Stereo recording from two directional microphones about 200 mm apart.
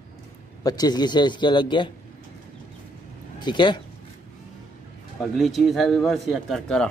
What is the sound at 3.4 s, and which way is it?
Speech, 25° left (ahead or behind).